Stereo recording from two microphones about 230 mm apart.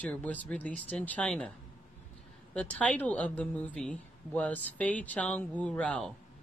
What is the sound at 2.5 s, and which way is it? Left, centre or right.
A woman's voice, centre.